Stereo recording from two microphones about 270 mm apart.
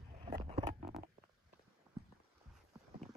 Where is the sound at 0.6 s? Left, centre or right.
Right.